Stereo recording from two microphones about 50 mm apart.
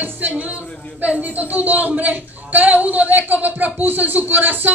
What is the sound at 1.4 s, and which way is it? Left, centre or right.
Speech, right.